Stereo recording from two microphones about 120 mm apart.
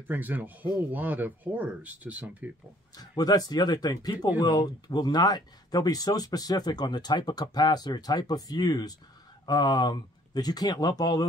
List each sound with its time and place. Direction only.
0.1 s speech: 15° right (ahead or behind)
3.0 s speech: 35° left (ahead or behind)